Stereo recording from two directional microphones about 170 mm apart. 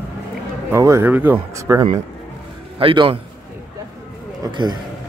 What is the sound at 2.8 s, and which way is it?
Speech, 30° right (ahead or behind).